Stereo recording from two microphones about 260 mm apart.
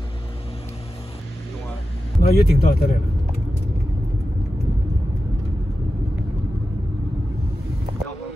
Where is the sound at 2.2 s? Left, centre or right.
Left.